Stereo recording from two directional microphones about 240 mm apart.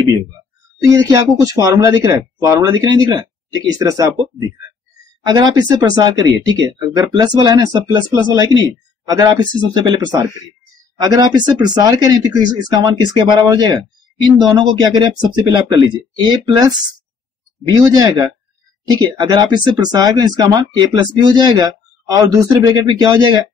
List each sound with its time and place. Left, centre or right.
0.8 s speech: centre
17.7 s speech: centre